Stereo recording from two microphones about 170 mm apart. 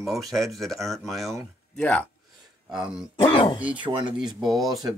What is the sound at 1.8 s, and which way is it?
Speech, 10° left (ahead or behind).